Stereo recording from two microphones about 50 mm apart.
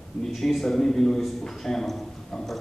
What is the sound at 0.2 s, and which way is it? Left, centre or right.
A woman's voice, centre.